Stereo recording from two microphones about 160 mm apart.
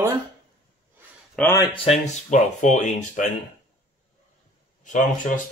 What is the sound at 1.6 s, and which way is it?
Speech, 35° left (ahead or behind).